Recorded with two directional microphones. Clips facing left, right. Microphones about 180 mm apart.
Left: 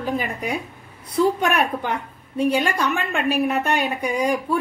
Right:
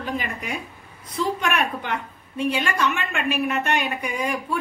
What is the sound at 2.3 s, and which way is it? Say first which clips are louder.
A woman's voice: left 4 dB; 35° left (ahead or behind).